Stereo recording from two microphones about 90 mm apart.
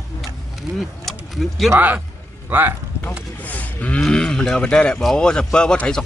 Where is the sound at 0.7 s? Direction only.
Centre (ahead or behind).